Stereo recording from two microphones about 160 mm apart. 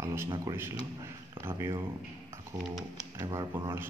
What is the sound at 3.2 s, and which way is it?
Speech, 20° right (ahead or behind).